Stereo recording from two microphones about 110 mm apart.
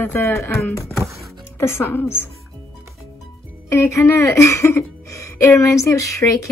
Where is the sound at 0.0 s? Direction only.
20° left (ahead or behind).